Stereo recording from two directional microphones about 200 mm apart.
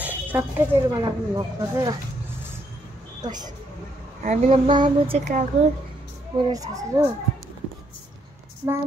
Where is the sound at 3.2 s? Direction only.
20° right (ahead or behind).